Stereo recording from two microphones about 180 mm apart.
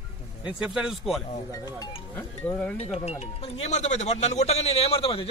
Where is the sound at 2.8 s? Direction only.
35° left (ahead or behind).